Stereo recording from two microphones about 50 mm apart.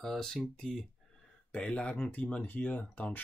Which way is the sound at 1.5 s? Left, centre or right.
Left.